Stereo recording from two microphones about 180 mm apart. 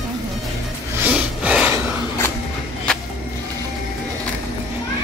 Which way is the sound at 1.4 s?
5° right (ahead or behind).